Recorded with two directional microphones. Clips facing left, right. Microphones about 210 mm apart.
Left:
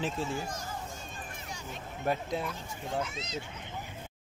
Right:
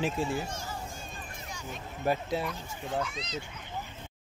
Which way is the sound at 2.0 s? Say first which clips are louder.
Right 2 dB; 5° right (ahead or behind).